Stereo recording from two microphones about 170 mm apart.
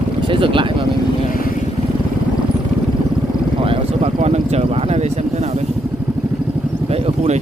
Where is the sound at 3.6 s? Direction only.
40° right (ahead or behind).